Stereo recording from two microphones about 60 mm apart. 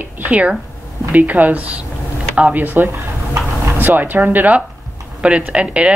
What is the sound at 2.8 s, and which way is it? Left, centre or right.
Speech, right.